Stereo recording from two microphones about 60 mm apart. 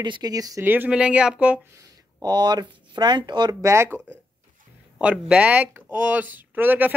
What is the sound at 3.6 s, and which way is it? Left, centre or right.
Speech, right.